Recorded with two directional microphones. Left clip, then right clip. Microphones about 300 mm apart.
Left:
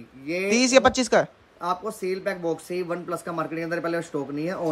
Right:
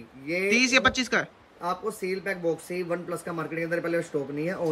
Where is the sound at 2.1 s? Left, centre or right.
Centre.